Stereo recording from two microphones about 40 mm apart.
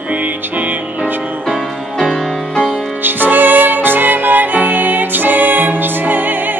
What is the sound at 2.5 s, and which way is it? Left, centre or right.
Music, left.